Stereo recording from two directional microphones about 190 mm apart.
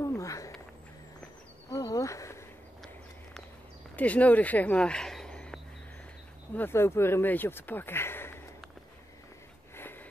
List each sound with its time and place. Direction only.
0.0 s a sound: 15° left (ahead or behind)
1.7 s insect: 20° left (ahead or behind)
3.9 s speech: 10° left (ahead or behind)